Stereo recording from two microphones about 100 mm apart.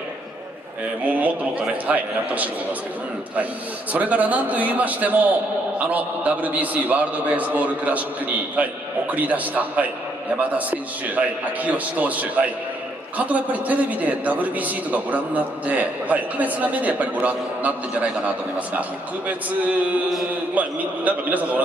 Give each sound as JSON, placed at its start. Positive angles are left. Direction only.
{"t": 1.0, "sound": "a sound", "side_deg": -15}
{"t": 1.6, "sound": "a man's voice", "side_deg": -15}
{"t": 3.9, "sound": "a man's voice", "side_deg": -15}